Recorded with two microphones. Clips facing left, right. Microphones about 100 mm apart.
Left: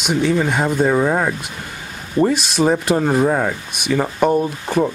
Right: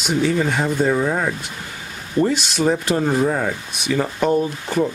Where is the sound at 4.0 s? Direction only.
15° left (ahead or behind).